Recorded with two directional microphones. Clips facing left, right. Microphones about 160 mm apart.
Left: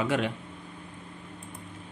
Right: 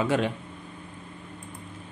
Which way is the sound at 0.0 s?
35° right (ahead or behind).